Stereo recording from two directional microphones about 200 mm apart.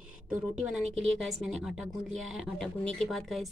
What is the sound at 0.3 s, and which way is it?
A woman's voice, 5° right (ahead or behind).